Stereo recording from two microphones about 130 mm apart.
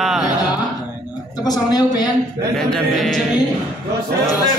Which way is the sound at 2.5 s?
5° left (ahead or behind).